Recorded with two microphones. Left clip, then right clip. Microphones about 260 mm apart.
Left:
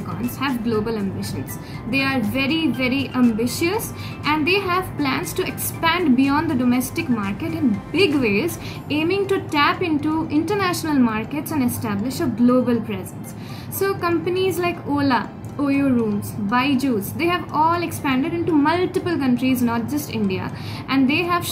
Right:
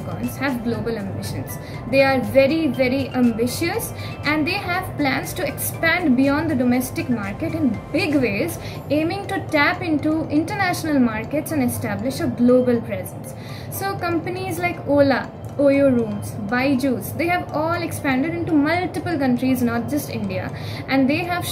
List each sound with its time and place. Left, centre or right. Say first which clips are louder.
0.4 s a woman's voice: left 2 dB; centre
13.7 s a woman's voice: left 3 dB; centre